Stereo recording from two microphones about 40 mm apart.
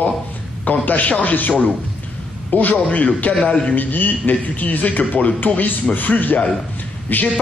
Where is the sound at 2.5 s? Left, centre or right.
Left.